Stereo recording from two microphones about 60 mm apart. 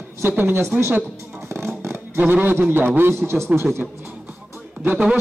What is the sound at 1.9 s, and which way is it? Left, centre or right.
Speech, right.